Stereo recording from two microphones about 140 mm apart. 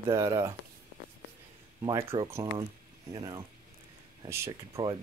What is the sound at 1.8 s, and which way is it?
Speech, 30° right (ahead or behind).